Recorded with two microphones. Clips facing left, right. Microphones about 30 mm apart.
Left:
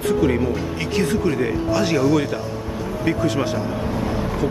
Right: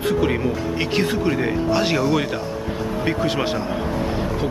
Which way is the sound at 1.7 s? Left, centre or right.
Right.